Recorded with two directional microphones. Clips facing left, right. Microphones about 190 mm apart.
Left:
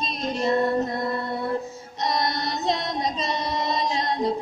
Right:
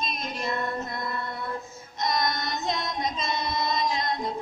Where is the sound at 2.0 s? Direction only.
35° left (ahead or behind).